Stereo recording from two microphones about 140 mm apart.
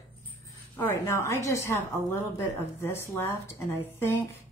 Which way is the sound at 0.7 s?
20° left (ahead or behind).